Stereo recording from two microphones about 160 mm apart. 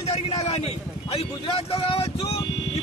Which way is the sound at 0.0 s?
40° left (ahead or behind).